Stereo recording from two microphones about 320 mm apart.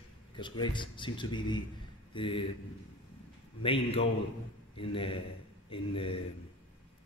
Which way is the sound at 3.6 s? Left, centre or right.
Centre.